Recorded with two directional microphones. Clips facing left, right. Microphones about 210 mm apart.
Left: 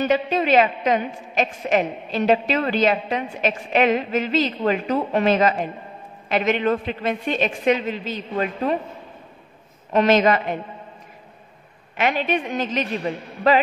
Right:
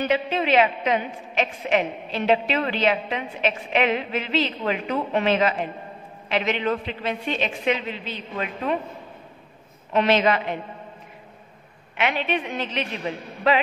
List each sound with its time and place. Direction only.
0.0 s a woman's voice: 45° left (ahead or behind)
9.9 s a woman's voice: 45° left (ahead or behind)
12.0 s a woman's voice: 40° left (ahead or behind)